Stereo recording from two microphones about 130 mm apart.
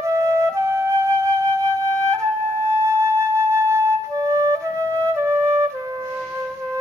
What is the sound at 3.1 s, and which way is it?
Flute, 20° right (ahead or behind).